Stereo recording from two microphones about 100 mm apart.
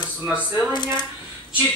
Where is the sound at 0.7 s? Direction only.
50° left (ahead or behind).